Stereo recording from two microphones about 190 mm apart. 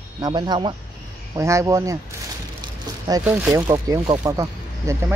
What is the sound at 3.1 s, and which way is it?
Speech, 10° right (ahead or behind).